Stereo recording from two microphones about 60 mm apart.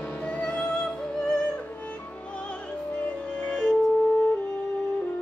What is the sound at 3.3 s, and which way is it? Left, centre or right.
Music, centre.